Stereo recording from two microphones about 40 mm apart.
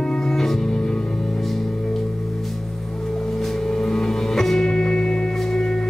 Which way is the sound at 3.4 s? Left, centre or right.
Centre.